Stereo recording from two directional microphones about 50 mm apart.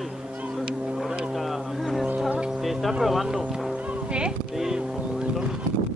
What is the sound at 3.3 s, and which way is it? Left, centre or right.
Speech, centre.